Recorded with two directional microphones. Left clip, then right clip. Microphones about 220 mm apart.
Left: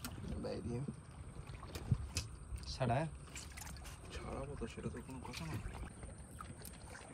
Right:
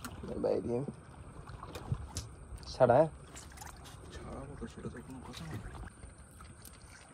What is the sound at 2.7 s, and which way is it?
Speech, 30° right (ahead or behind).